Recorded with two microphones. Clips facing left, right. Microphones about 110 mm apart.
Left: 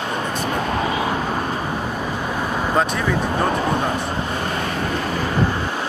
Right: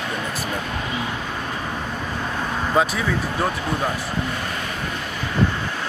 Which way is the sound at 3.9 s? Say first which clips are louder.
Left 3 dB; 35° left (ahead or behind).